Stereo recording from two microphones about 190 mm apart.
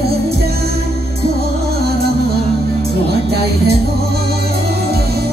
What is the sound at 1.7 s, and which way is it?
Music, 55° right (ahead or behind).